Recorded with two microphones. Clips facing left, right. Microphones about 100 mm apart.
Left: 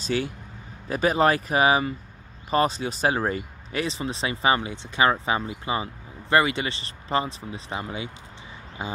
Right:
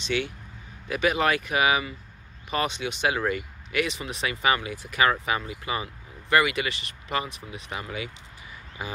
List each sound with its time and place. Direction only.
0.0 s speech: 40° left (ahead or behind)
8.8 s music: 25° left (ahead or behind)